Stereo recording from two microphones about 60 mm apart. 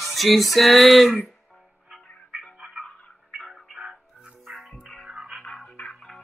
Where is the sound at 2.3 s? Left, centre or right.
Centre.